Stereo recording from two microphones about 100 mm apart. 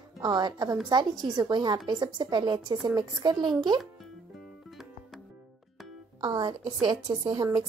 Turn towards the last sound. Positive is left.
turn(degrees=-45)  # may be behind; listen again after turning